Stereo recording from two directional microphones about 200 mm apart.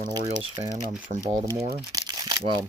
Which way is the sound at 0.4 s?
25° right (ahead or behind).